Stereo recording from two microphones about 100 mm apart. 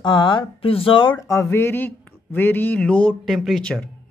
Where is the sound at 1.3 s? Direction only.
25° left (ahead or behind); by 3.3 s 10° left (ahead or behind).